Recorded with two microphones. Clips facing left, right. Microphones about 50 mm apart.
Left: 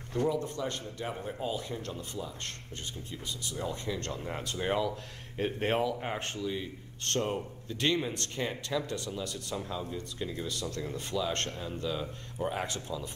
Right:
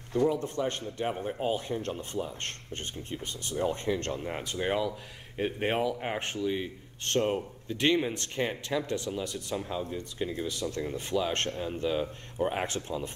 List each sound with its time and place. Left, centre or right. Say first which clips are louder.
0.3 s speech: right 2 dB; right
4.2 s speech: right 2 dB; centre
6.0 s a man's voice: right 3 dB; centre; by 13.1 s right